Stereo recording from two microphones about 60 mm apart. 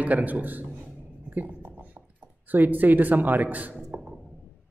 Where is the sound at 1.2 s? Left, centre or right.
Right.